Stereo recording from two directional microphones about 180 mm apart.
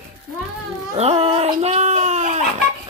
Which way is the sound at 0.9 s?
35° right (ahead or behind).